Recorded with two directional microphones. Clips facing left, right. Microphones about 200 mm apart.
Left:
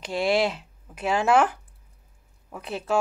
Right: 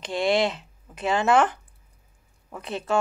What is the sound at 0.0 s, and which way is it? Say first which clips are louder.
Speech: even; 5° left (ahead or behind).